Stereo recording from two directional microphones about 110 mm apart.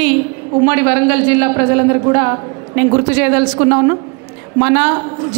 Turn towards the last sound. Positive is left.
turn(degrees=-20)  # may be behind; listen again after turning